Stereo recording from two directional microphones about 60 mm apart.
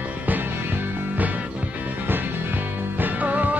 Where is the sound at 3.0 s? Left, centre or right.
Right.